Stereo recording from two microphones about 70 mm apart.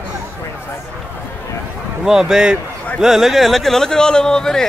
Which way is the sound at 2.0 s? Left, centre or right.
Centre.